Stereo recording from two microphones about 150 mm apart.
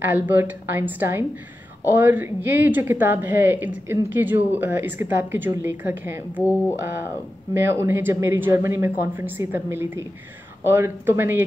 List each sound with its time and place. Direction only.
0.0 s speech: 15° right (ahead or behind)
7.5 s speech: 15° right (ahead or behind)